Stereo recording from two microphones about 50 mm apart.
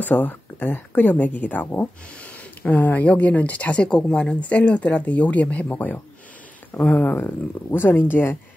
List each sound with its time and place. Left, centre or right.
0.0 s speech: left